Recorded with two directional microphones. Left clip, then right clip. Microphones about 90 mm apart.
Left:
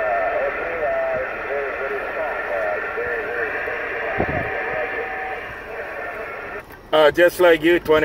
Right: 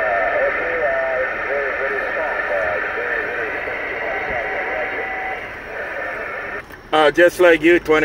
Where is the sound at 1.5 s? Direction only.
15° left (ahead or behind).